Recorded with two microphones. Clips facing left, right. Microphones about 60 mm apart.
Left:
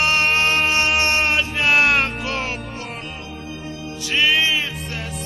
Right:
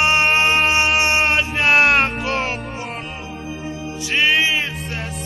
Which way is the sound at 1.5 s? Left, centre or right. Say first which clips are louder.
Right 2 dB; centre.